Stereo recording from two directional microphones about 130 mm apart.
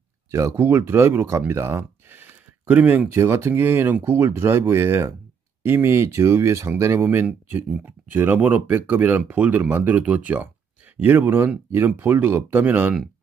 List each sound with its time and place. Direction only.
0.3 s speech: 20° right (ahead or behind)